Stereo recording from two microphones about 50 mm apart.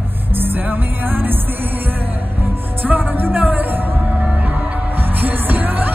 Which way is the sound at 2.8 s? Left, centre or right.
Right.